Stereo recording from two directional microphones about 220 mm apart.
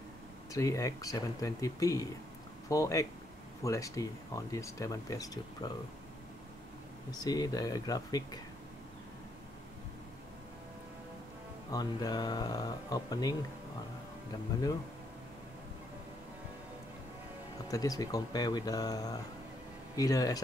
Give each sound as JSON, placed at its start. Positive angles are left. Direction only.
{"t": 0.5, "sound": "speech", "side_deg": 15}
{"t": 7.1, "sound": "speech", "side_deg": 15}
{"t": 11.7, "sound": "speech", "side_deg": 20}
{"t": 17.6, "sound": "speech", "side_deg": 15}